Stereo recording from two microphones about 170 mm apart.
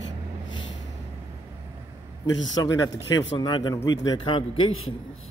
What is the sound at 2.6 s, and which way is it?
Speech, 20° left (ahead or behind).